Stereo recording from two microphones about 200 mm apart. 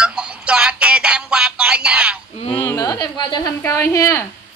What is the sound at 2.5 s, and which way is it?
A woman's voice, 10° left (ahead or behind).